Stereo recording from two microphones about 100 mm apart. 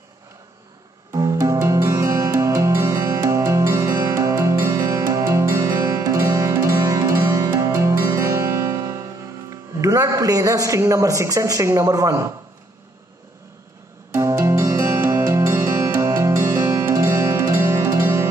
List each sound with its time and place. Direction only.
1.1 s music: 30° right (ahead or behind)
9.5 s a man's voice: 35° right (ahead or behind)
14.1 s music: 30° right (ahead or behind)